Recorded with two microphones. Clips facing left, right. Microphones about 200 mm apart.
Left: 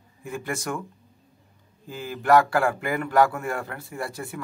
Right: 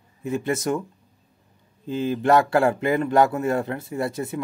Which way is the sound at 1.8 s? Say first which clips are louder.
Right 4 dB; 25° right (ahead or behind).